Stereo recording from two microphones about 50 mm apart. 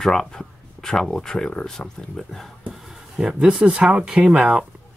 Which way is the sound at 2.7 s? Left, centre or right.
Centre.